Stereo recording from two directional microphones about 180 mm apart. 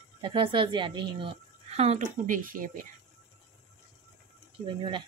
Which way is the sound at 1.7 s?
35° right (ahead or behind).